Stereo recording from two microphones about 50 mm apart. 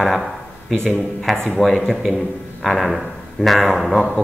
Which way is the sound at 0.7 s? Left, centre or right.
Centre.